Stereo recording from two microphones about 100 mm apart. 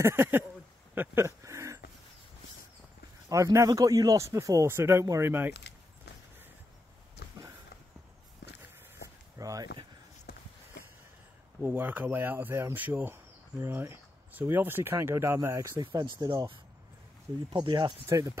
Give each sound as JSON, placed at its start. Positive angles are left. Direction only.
{"t": 0.0, "sound": "speech", "side_deg": -25}
{"t": 0.9, "sound": "a sound", "side_deg": -25}
{"t": 3.3, "sound": "speech", "side_deg": -35}
{"t": 9.4, "sound": "a sound", "side_deg": -35}
{"t": 11.6, "sound": "speech", "side_deg": -20}
{"t": 15.9, "sound": "speech", "side_deg": -40}
{"t": 17.6, "sound": "speech", "side_deg": -45}
{"t": 18.0, "sound": "speech", "side_deg": -30}